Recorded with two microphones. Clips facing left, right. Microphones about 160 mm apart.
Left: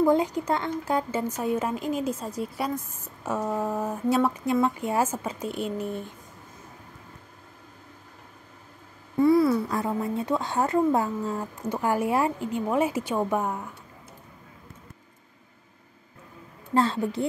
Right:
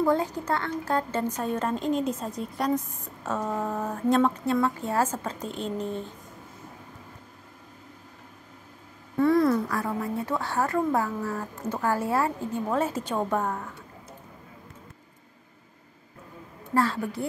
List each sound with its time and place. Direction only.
0.0 s speech: 15° left (ahead or behind)
9.1 s a sound: 10° left (ahead or behind)
9.7 s speech: 20° left (ahead or behind)
16.7 s a woman's voice: 20° left (ahead or behind)